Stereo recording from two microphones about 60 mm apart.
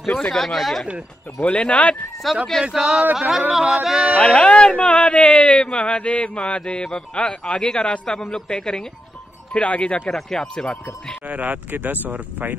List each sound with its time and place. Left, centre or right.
0.3 s speech: centre
1.4 s speech: centre
2.3 s speech: centre
2.7 s speech: centre
4.2 s speech: centre
11.2 s speech: right